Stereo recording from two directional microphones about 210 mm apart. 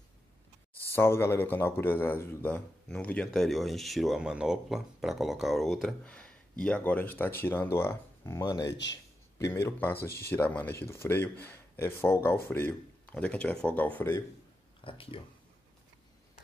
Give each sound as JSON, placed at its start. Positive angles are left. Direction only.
{"t": 0.8, "sound": "a man's voice", "side_deg": 10}
{"t": 14.8, "sound": "speech", "side_deg": 25}